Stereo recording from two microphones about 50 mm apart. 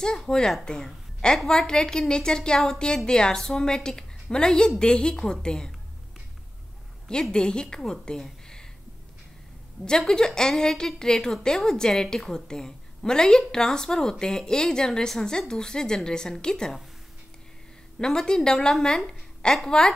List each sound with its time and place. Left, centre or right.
0.0 s a woman's voice: centre
1.5 s a woman's voice: centre
7.1 s a woman's voice: centre
9.8 s a woman's voice: centre
17.9 s a woman's voice: centre